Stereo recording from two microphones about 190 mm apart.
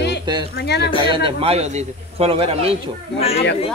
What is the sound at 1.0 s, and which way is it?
A man's voice, 25° right (ahead or behind).